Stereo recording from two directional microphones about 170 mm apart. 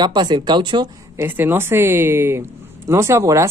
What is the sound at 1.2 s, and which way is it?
Speech, 10° right (ahead or behind).